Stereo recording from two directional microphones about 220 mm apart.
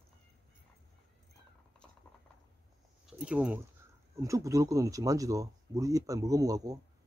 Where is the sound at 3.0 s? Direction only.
5° right (ahead or behind).